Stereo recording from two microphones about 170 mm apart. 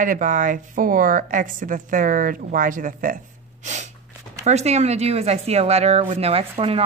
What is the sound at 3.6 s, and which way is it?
Snort, 45° right (ahead or behind).